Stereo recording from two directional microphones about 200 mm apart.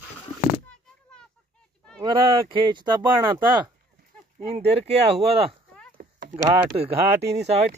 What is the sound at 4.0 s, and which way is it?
Speech, 35° right (ahead or behind).